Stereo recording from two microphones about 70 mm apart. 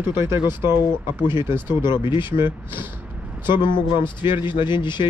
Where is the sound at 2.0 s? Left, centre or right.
Left.